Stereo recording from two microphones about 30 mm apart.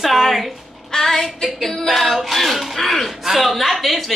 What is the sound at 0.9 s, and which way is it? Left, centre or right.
Child singing, centre.